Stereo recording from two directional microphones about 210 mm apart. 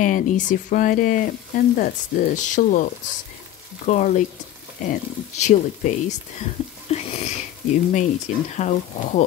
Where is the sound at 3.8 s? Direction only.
35° left (ahead or behind).